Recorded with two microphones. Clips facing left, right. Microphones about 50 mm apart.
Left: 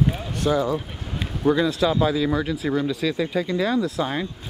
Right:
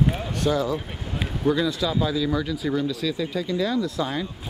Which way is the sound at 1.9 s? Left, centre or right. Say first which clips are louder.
Left 3 dB; left.